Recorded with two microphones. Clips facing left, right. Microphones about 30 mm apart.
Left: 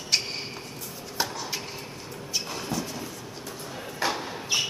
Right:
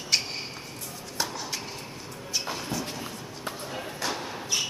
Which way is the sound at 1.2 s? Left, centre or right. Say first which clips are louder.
Left 2 dB; centre.